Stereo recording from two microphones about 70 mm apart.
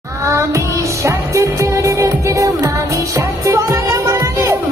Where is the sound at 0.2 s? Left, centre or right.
Right.